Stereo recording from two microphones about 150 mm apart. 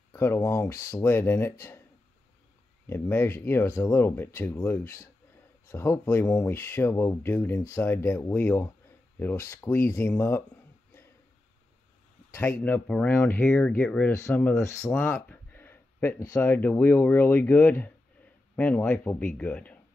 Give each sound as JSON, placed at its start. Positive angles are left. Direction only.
{"t": 0.1, "sound": "speech", "side_deg": 15}
{"t": 2.9, "sound": "speech", "side_deg": 15}
{"t": 12.3, "sound": "speech", "side_deg": 10}
{"t": 14.9, "sound": "a sound", "side_deg": 10}
{"t": 16.3, "sound": "speech", "side_deg": 10}